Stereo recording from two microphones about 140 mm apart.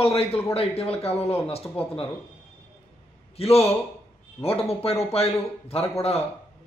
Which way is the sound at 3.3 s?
45° left (ahead or behind).